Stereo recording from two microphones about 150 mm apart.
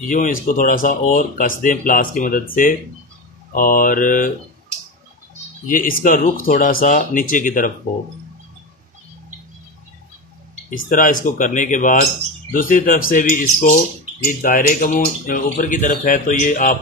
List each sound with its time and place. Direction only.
0.1 s speech: 60° left (ahead or behind)
5.7 s speech: 65° left (ahead or behind)
10.7 s speech: 65° left (ahead or behind)